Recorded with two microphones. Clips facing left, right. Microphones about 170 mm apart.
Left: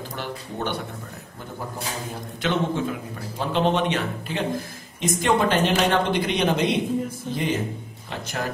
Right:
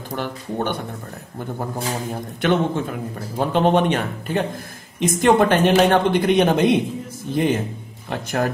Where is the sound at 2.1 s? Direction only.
50° right (ahead or behind).